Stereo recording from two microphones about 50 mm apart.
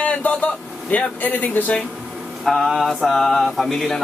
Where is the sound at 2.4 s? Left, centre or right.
Centre.